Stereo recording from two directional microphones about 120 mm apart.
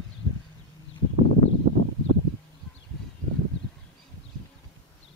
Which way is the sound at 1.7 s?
50° right (ahead or behind).